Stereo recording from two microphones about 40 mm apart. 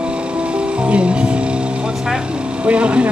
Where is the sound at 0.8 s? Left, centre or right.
Right.